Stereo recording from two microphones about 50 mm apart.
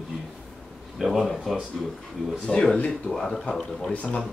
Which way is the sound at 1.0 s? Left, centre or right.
Centre.